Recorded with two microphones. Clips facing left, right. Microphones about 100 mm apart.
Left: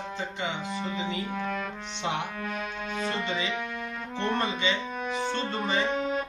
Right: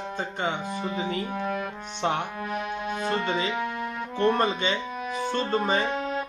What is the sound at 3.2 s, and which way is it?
Speech, 40° right (ahead or behind).